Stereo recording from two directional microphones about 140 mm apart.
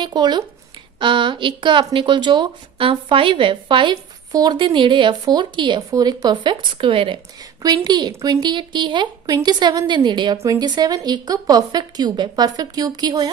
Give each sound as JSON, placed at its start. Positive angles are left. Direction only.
{"t": 0.0, "sound": "a woman's voice", "side_deg": -30}